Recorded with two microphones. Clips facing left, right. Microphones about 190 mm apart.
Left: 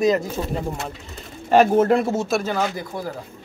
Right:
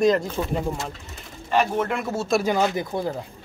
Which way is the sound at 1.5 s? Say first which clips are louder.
Left 7 dB; 50° left (ahead or behind).